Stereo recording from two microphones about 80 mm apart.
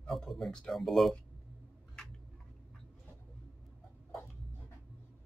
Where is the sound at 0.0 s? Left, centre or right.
Centre.